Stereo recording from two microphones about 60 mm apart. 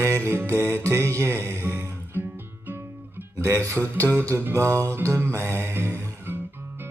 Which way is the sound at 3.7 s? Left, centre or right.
Right.